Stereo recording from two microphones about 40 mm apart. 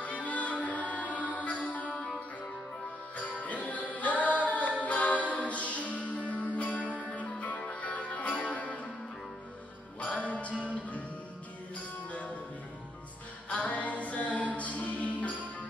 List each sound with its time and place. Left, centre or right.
0.0 s music: left
3.2 s music: left
9.9 s music: left
13.7 s music: left